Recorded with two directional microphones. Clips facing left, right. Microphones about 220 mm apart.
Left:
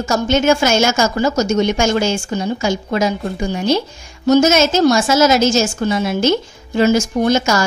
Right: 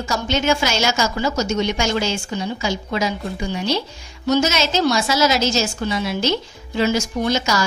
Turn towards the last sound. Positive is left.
turn(degrees=50)  # may be behind; listen again after turning